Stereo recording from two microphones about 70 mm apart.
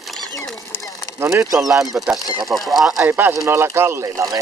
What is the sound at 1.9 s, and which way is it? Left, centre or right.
Speech, centre.